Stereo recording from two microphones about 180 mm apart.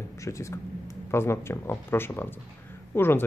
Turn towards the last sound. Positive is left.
turn(degrees=10)  # may be behind; listen again after turning